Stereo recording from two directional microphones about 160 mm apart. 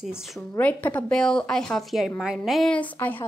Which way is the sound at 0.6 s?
10° left (ahead or behind).